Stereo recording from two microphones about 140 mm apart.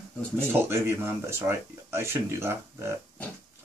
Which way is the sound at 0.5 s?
20° right (ahead or behind).